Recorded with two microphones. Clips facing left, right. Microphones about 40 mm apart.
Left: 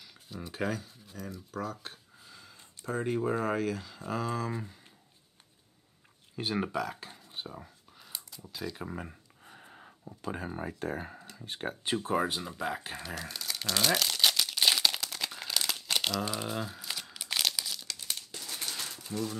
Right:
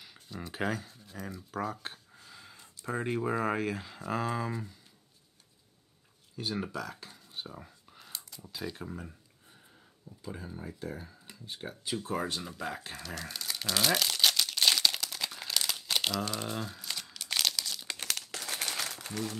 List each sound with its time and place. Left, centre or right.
0.5 s speech: centre
0.8 s speech: centre
1.5 s speech: centre
4.5 s speech: centre
6.3 s speech: left
7.4 s a sound: centre
8.6 s speech: centre
9.5 s a sound: left
11.4 s speech: left
12.1 s speech: centre
12.4 s speech: centre
13.1 s crumpling: centre
18.0 s crumpling: right
18.7 s a sound: right